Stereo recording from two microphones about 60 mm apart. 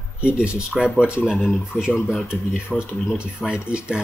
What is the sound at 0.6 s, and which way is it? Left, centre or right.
Speech, centre.